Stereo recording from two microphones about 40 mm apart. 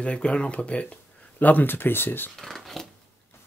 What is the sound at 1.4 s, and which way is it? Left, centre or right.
Speech, left.